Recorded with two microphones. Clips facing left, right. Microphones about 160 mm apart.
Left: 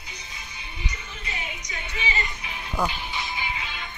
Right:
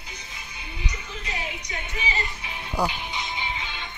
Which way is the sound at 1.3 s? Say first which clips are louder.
Right 3 dB; 40° right (ahead or behind).